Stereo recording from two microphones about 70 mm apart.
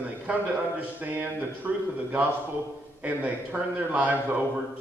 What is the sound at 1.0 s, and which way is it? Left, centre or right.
Speech, right.